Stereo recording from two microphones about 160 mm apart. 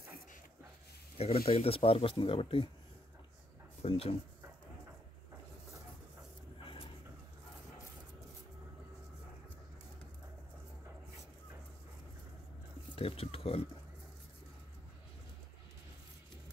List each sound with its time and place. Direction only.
1.1 s speech: 40° left (ahead or behind)
3.8 s speech: 40° left (ahead or behind)
12.9 s speech: 35° left (ahead or behind)